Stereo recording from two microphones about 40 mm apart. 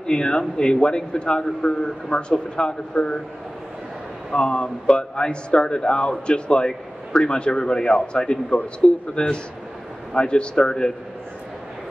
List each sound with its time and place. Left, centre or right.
0.0 s speech: left
4.3 s speech: left
10.1 s speech: left